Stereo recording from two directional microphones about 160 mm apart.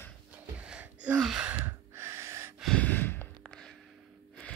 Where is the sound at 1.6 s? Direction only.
15° right (ahead or behind).